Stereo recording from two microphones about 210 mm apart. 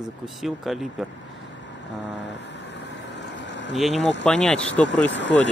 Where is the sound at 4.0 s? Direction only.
60° left (ahead or behind).